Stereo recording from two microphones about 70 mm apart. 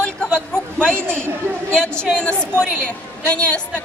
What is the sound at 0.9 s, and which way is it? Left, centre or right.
Speech, right.